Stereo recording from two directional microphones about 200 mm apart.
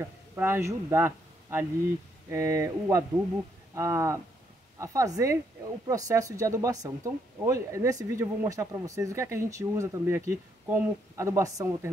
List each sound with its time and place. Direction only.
0.4 s a man's voice: 10° right (ahead or behind)